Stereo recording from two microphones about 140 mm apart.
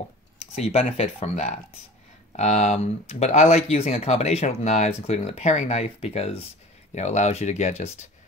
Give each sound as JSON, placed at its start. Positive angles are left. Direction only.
{"t": 0.6, "sound": "speech", "side_deg": 50}